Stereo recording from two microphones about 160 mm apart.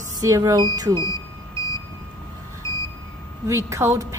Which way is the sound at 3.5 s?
20° right (ahead or behind).